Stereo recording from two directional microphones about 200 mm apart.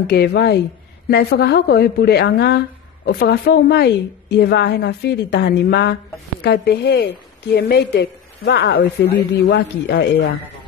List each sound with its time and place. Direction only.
0.0 s a woman's voice: 55° left (ahead or behind)